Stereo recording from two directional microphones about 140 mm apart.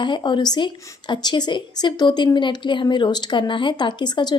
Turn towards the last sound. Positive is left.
turn(degrees=30)  # may be behind; listen again after turning